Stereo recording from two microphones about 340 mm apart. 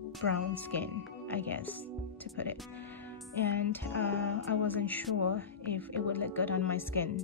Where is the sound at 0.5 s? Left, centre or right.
Centre.